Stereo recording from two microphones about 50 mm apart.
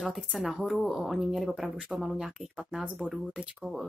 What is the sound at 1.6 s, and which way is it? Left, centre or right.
Speech, centre.